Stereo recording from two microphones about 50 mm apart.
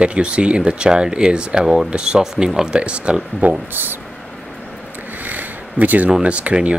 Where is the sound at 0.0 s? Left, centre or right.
Right.